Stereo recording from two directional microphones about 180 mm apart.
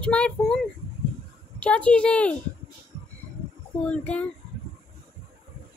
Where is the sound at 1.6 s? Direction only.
5° left (ahead or behind).